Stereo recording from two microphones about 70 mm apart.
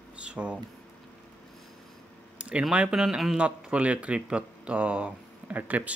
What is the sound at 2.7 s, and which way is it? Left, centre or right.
Speech, centre.